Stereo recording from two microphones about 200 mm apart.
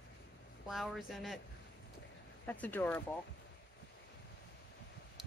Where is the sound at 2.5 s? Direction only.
10° left (ahead or behind).